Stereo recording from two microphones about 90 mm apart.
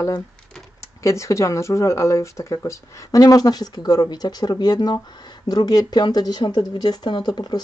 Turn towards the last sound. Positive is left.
turn(degrees=50)  # may be behind; listen again after turning